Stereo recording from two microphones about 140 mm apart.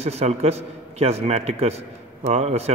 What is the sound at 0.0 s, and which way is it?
Speech, 50° right (ahead or behind).